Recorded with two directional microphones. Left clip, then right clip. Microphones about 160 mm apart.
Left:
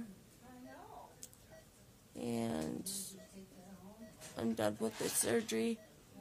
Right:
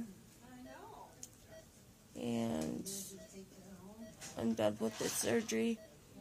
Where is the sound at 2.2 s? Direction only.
20° left (ahead or behind).